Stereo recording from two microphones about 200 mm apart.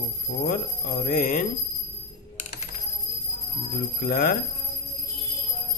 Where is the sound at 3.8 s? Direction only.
45° left (ahead or behind).